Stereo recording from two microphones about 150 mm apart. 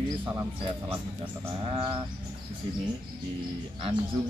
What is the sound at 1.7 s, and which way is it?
Speech, 30° right (ahead or behind).